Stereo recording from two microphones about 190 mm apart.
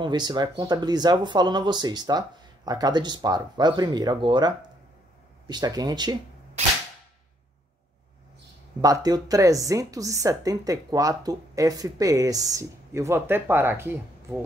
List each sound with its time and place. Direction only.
0.0 s speech: 20° right (ahead or behind)
8.8 s a woman's voice: 20° right (ahead or behind)